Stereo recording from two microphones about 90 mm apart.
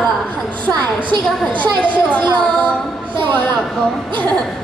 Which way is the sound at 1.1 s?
65° right (ahead or behind).